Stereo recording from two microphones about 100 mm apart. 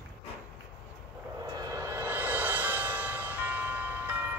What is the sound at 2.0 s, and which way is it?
Music, 20° right (ahead or behind).